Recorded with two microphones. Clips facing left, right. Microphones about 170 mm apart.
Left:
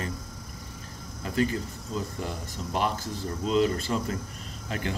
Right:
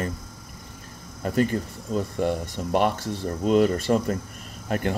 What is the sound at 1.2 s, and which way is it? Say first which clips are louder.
Speech: right 4 dB; 50° right (ahead or behind).